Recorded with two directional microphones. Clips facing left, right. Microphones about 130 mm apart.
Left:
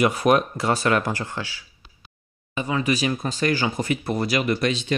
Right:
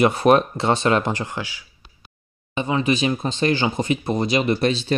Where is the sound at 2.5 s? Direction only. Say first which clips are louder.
Right 3 dB; 25° right (ahead or behind).